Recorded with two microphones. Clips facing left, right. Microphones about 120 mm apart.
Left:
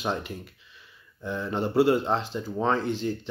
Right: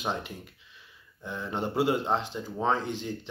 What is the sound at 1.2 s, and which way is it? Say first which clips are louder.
Speech: left 4 dB; 15° right (ahead or behind).